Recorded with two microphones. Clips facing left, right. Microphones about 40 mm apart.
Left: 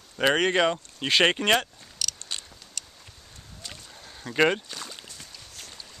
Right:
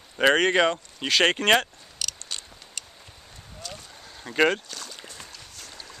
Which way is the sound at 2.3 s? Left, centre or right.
Left.